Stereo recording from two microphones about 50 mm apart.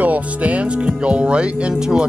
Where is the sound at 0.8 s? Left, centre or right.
Right.